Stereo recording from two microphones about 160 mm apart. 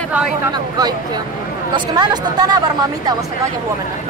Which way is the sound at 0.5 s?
25° right (ahead or behind).